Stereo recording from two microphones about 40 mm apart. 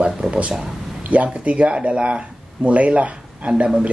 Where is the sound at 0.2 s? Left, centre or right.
Centre.